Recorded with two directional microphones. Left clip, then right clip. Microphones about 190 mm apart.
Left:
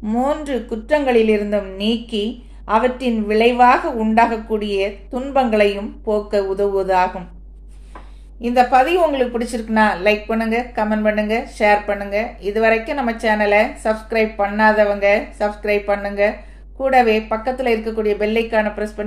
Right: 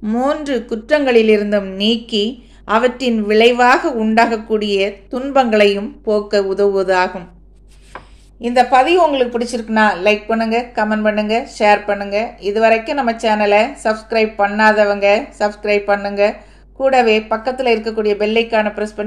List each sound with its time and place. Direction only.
0.0 s a woman's voice: 25° right (ahead or behind)
8.4 s a woman's voice: 10° right (ahead or behind)